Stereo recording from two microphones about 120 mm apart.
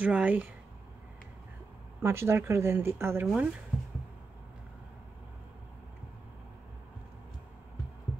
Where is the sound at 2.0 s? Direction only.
20° right (ahead or behind).